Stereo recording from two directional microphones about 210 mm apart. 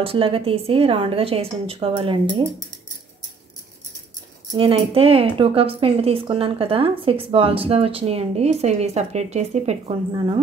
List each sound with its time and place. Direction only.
0.0 s speech: 25° right (ahead or behind)
4.5 s speech: 25° right (ahead or behind)